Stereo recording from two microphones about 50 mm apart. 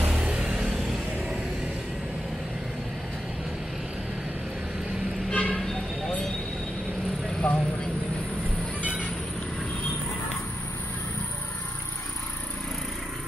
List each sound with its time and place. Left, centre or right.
0.2 s vehicle: right
0.6 s vehicle: centre
1.1 s vehicle: centre
5.3 s music: left
5.6 s vehicle: centre
7.4 s vehicle: centre